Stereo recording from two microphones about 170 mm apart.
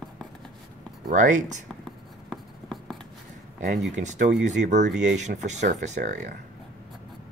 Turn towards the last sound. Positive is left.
turn(degrees=-45)  # may be behind; listen again after turning